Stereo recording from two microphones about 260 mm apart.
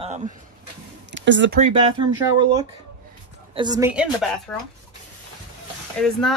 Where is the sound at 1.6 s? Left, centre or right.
Right; by 4.3 s centre.